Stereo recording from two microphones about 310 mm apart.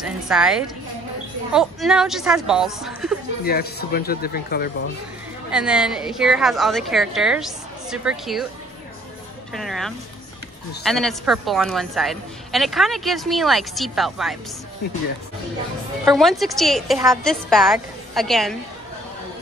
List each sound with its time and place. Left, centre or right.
0.0 s a woman's voice: centre
3.4 s speech: left
5.5 s a woman's voice: centre
9.5 s a woman's voice: centre
16.2 s a woman's voice: centre